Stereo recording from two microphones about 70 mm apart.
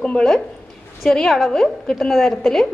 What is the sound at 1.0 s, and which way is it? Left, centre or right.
A woman's voice, centre.